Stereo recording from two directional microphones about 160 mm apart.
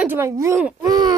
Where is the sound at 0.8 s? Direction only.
25° right (ahead or behind).